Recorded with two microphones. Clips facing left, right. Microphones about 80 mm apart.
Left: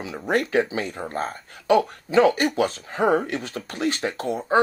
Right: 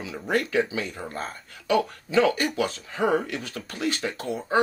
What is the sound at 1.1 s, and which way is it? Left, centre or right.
Speech, left.